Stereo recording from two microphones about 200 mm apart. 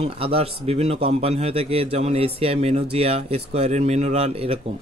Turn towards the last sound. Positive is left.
turn(degrees=-30)  # may be behind; listen again after turning